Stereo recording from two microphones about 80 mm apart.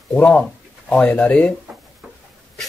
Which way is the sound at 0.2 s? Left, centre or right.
Centre.